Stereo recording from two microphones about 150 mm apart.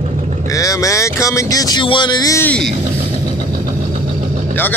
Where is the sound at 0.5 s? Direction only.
20° left (ahead or behind).